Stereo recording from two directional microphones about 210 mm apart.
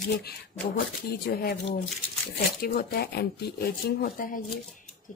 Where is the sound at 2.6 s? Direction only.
50° left (ahead or behind).